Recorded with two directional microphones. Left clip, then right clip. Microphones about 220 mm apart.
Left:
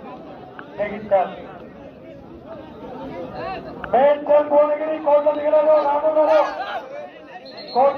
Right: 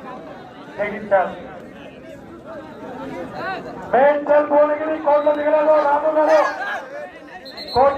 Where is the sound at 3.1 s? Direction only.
40° left (ahead or behind).